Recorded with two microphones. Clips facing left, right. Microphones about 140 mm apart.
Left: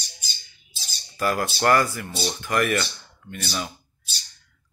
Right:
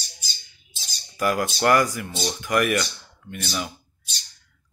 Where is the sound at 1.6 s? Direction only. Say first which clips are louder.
Right 1 dB; 15° right (ahead or behind).